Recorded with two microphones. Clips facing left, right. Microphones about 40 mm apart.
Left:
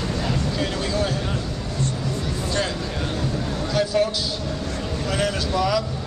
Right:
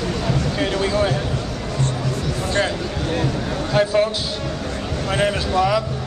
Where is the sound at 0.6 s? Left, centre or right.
Right.